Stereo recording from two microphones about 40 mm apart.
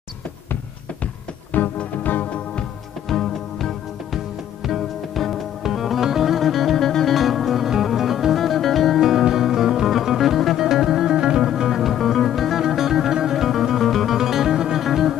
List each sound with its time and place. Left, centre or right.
1.5 s music: left
3.1 s music: centre
6.9 s music: centre
7.2 s music: centre
9.0 s music: centre